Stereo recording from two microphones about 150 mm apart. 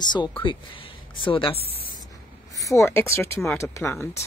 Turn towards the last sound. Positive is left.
turn(degrees=20)  # may be behind; listen again after turning